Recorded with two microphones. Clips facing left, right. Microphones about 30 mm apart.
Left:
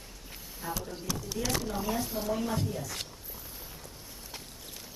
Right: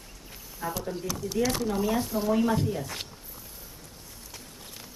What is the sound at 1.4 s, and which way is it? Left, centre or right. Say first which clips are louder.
Speech: right 7 dB; centre.